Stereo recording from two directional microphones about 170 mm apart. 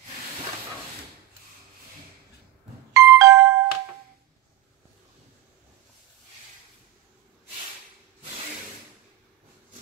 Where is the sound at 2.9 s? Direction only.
20° right (ahead or behind).